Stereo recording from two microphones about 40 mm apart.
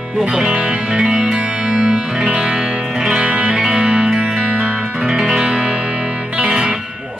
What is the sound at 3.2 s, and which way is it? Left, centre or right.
Music, right.